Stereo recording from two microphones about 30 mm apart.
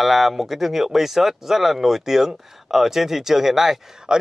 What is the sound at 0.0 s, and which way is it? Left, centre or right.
Speech, centre.